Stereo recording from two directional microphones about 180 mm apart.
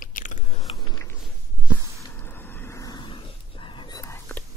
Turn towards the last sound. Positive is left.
turn(degrees=10)  # may be behind; listen again after turning